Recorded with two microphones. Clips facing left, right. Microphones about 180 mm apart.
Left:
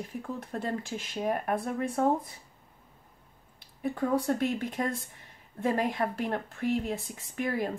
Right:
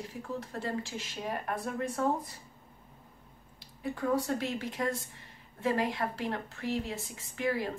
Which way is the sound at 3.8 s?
50° left (ahead or behind).